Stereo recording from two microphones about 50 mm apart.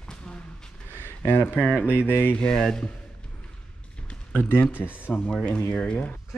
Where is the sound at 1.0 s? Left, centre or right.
Left.